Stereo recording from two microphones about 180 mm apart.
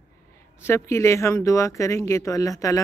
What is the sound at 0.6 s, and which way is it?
Speech, 15° left (ahead or behind).